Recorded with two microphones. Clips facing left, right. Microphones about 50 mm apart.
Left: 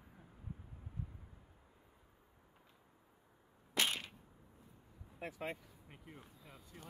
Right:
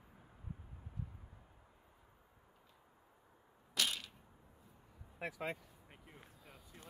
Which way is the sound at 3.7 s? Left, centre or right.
Left.